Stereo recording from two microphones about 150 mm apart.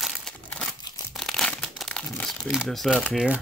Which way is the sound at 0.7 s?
30° left (ahead or behind).